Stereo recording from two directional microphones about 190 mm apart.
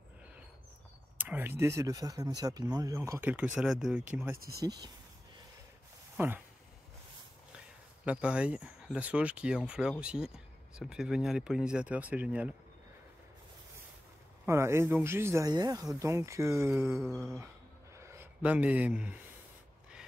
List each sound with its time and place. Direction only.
1.1 s speech: 10° right (ahead or behind)
4.4 s speech: 55° right (ahead or behind)
4.6 s speech: 20° right (ahead or behind)
6.1 s speech: 10° right (ahead or behind)
8.0 s speech: 5° right (ahead or behind)
14.4 s speech: 15° right (ahead or behind)
17.9 s a sound: 15° right (ahead or behind)